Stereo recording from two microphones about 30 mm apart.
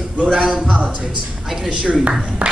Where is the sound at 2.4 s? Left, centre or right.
Right.